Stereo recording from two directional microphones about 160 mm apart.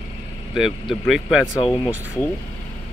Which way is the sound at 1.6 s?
35° left (ahead or behind).